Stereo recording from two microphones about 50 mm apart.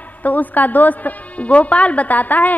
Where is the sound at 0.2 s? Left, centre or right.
Left.